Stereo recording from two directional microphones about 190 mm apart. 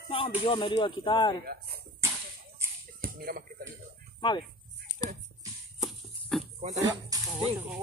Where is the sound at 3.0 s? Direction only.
50° right (ahead or behind).